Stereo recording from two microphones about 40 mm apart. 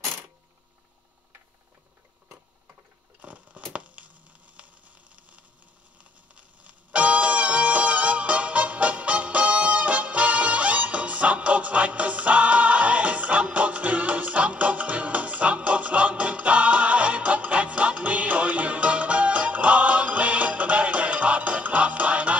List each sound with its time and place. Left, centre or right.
3.2 s a sound: right
3.7 s hum: right
6.6 s music: right